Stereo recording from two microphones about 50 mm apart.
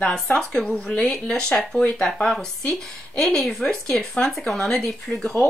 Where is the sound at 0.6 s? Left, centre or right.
Left.